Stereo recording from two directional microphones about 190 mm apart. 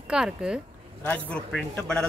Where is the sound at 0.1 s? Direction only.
5° right (ahead or behind).